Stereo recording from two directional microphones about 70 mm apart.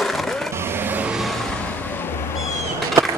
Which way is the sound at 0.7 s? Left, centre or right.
Right.